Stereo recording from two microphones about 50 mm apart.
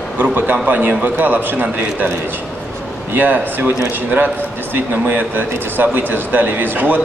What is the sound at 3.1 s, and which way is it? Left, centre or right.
Speech, right.